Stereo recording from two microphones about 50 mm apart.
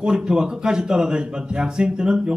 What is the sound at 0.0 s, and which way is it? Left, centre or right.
A man's voice, centre.